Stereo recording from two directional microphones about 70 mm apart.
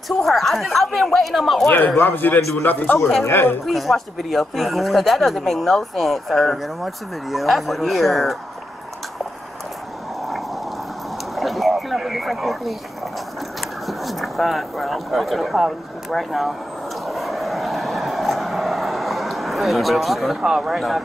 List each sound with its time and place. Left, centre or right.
0.2 s speech: centre
1.7 s speech: left
3.6 s speech: centre
11.3 s a sound: centre
13.8 s speech: centre
17.0 s vehicle: centre